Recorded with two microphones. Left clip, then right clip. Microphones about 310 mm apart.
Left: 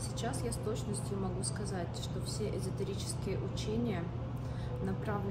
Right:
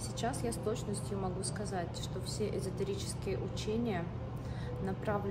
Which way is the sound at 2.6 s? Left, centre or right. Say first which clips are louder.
Right 2 dB; centre.